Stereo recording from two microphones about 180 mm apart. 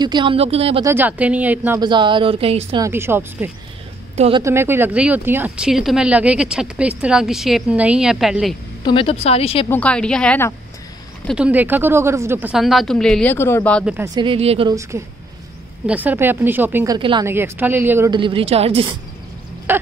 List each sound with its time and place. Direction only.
0.0 s speech: 25° right (ahead or behind)
0.8 s a woman's voice: 10° right (ahead or behind)
1.8 s speech: 25° right (ahead or behind)
2.8 s a woman's voice: 15° right (ahead or behind)
8.8 s speech: 30° left (ahead or behind)
9.7 s speech: 5° left (ahead or behind)
11.3 s speech: 5° right (ahead or behind); by 13.8 s 10° left (ahead or behind)
14.0 s speech: 25° right (ahead or behind)
14.7 s a woman's voice: 15° right (ahead or behind)
17.3 s a woman's voice: 10° right (ahead or behind)
18.1 s a woman's voice: 30° right (ahead or behind)
19.7 s a woman's voice: 10° right (ahead or behind)